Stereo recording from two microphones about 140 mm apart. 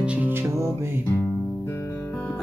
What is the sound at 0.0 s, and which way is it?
Music, 10° right (ahead or behind).